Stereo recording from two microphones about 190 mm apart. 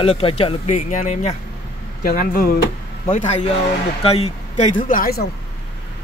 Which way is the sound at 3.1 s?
40° left (ahead or behind).